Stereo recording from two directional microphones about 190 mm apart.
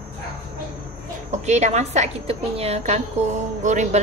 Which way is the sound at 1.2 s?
35° right (ahead or behind).